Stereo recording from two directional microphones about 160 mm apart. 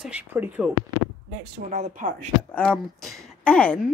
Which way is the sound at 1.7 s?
50° right (ahead or behind).